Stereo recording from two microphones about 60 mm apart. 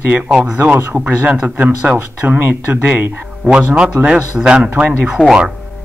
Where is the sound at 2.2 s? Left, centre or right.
Right.